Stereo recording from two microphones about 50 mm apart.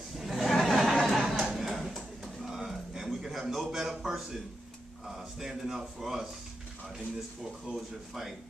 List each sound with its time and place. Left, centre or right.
0.2 s a sound: centre
5.0 s speech: centre
7.7 s speech: centre
8.1 s a man's voice: centre